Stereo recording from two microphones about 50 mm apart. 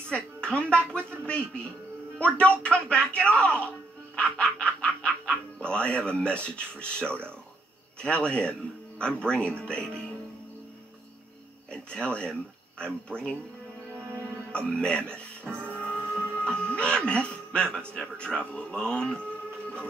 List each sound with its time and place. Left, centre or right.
0.1 s music: left
1.2 s a man's voice: left
11.7 s speech: left
14.5 s speech: centre
15.4 s music: right
15.8 s speech: centre